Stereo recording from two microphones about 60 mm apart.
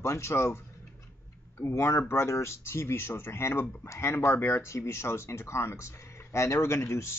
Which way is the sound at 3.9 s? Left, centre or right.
Left.